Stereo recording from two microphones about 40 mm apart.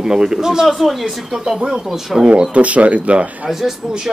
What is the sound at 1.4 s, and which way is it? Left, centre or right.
Speech, centre.